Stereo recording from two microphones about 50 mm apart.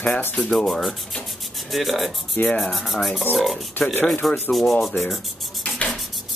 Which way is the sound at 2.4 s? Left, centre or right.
Left.